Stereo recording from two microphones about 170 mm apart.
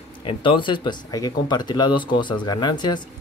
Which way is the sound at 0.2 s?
30° left (ahead or behind).